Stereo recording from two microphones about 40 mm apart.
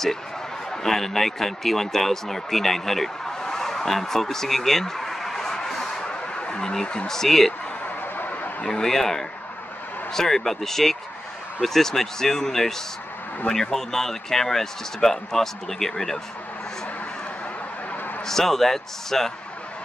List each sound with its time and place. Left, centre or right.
0.7 s a man's voice: centre
8.6 s a man's voice: centre
18.2 s a man's voice: centre